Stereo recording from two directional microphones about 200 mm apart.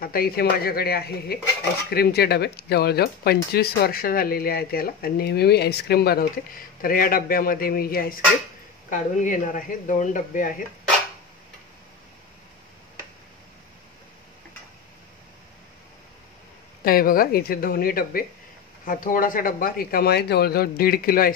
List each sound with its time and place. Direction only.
0.0 s speech: 50° left (ahead or behind)
16.8 s speech: 45° left (ahead or behind)